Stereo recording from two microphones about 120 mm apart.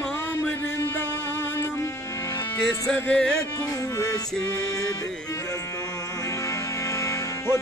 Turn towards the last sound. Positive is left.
turn(degrees=20)  # may be behind; listen again after turning